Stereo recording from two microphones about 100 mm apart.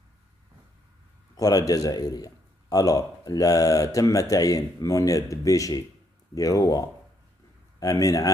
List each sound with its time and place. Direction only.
1.3 s a man's voice: 40° left (ahead or behind)
7.8 s a man's voice: 35° left (ahead or behind)